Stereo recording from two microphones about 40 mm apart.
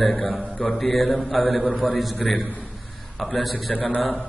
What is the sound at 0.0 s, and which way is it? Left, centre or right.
A man's voice, centre.